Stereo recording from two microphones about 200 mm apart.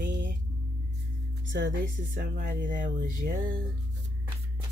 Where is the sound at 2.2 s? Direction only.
45° right (ahead or behind).